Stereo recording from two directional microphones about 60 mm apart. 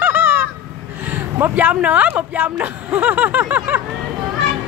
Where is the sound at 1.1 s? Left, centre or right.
Right.